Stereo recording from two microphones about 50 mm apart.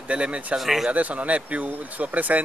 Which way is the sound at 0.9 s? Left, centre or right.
Right.